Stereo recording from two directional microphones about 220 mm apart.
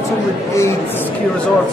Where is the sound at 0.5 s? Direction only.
10° left (ahead or behind).